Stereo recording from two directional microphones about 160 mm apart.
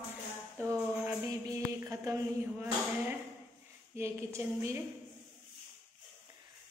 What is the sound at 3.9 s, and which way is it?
Speech, 15° right (ahead or behind).